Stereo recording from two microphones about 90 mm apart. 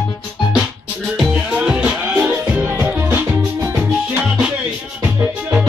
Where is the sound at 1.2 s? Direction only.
15° right (ahead or behind).